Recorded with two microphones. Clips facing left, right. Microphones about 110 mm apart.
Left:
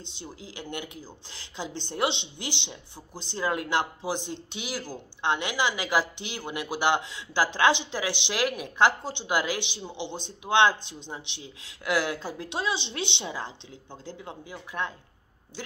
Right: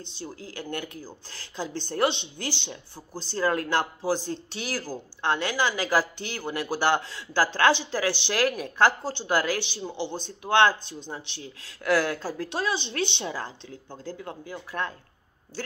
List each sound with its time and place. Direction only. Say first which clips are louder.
0.0 s speech: right 3 dB; 20° left (ahead or behind)